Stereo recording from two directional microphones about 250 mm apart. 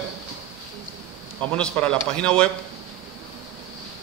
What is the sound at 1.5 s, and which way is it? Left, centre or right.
Speech, centre.